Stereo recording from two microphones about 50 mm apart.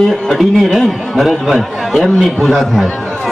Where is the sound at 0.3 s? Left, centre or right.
Centre.